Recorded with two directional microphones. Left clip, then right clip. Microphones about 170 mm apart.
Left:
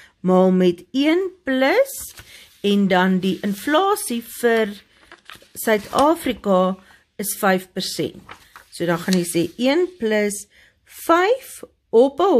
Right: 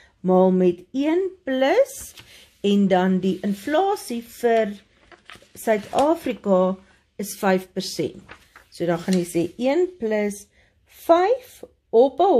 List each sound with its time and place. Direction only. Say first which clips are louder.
0.2 s speech: left 1 dB; 25° left (ahead or behind)
5.1 s a sound: left 3 dB; 35° left (ahead or behind)
6.0 s speech: left 2 dB; 20° left (ahead or behind)